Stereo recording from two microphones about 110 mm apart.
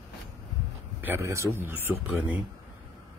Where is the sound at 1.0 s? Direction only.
20° right (ahead or behind).